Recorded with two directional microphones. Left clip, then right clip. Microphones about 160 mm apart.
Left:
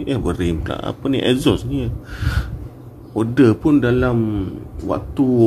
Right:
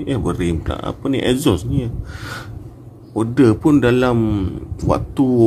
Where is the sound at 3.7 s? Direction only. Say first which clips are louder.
Right 2 dB; 35° right (ahead or behind).